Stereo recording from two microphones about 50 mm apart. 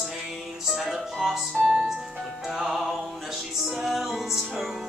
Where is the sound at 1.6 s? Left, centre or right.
Right.